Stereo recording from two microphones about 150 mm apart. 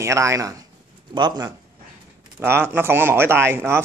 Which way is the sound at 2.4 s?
15° right (ahead or behind).